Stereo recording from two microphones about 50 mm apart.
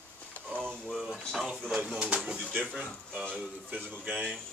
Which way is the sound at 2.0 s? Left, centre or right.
Right.